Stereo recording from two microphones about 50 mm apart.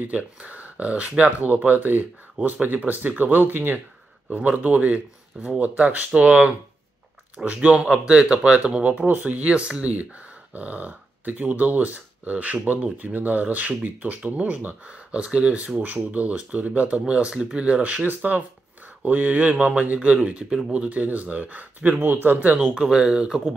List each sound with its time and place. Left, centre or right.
0.4 s speech: right
4.3 s speech: right
9.0 s speech: right
9.5 s speech: right
14.9 s speech: right
20.2 s speech: right
22.8 s speech: centre